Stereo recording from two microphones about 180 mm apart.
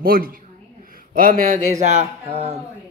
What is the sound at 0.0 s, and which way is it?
A man's voice, 55° right (ahead or behind).